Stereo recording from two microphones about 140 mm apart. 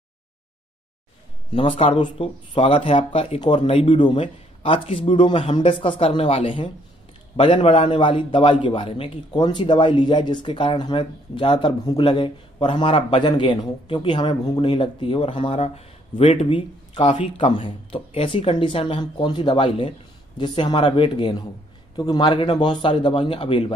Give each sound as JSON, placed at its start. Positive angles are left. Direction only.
{"t": 1.5, "sound": "a man's voice", "side_deg": 40}